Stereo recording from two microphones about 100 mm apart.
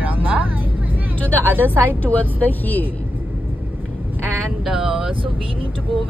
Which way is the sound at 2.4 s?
15° left (ahead or behind).